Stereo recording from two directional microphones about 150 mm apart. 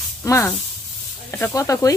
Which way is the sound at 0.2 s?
15° left (ahead or behind).